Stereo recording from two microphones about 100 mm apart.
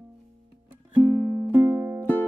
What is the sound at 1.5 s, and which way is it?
Music, 15° right (ahead or behind).